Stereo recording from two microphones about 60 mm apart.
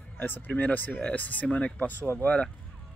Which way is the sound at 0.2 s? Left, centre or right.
Left.